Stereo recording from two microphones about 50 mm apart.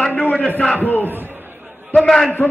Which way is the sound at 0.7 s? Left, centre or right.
Left.